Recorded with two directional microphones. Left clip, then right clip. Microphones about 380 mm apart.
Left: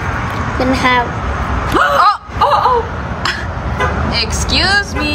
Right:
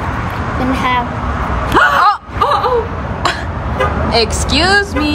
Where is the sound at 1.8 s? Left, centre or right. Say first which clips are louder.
Right 1 dB; centre.